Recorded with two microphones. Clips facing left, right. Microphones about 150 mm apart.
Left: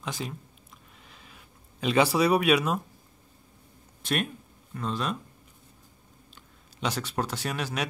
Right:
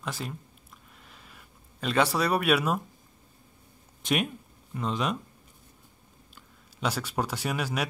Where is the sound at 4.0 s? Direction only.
15° right (ahead or behind).